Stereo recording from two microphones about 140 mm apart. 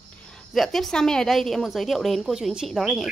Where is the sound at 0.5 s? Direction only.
Centre (ahead or behind).